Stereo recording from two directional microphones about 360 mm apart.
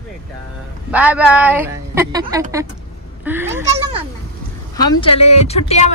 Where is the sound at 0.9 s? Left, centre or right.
Centre.